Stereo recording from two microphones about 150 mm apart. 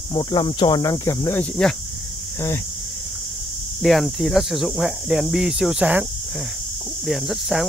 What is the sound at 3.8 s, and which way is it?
Speech, centre (ahead or behind).